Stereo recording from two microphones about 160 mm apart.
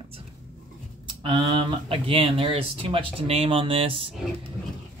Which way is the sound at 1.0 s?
30° right (ahead or behind).